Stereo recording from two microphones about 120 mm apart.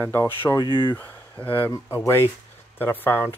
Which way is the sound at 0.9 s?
15° left (ahead or behind).